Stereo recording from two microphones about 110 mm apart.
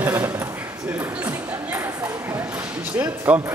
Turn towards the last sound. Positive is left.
turn(degrees=-10)  # may be behind; listen again after turning